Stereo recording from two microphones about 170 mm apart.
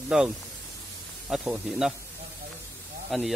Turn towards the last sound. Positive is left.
turn(degrees=0)  # may be behind; listen again after turning